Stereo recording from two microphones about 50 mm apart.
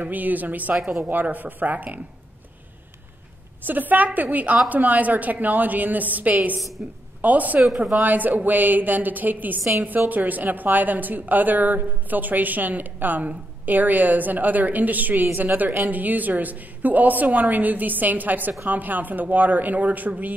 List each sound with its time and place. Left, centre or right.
0.0 s a woman's voice: right
0.7 s a woman's voice: centre
1.3 s a woman's voice: right
3.6 s a woman's voice: right
9.6 s a woman's voice: right
9.8 s a woman's voice: right